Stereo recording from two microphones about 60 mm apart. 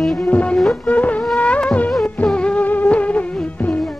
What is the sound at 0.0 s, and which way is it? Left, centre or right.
Music, centre.